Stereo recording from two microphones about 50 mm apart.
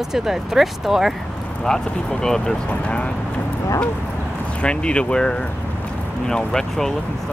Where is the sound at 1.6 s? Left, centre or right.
Centre.